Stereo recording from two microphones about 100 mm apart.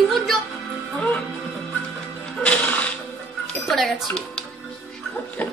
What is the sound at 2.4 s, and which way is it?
Music, 15° left (ahead or behind).